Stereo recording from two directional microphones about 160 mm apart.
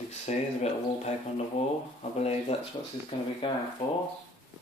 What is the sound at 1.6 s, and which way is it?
Speech, 40° left (ahead or behind).